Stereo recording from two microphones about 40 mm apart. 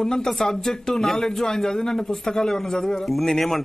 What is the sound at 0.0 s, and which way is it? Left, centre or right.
Speech, centre.